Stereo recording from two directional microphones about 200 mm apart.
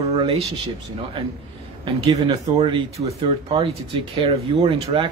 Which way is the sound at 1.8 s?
25° right (ahead or behind).